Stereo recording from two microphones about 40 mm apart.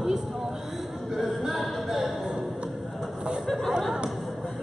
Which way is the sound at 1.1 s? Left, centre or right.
Centre.